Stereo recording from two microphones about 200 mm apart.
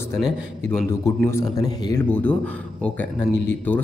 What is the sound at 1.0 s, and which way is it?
Speech, 15° left (ahead or behind).